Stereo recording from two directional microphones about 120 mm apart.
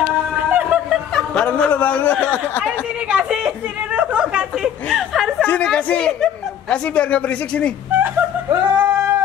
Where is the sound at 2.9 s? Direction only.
10° right (ahead or behind).